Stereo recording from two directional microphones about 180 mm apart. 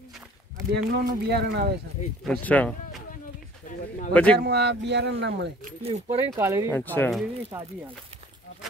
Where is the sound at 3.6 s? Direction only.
45° left (ahead or behind).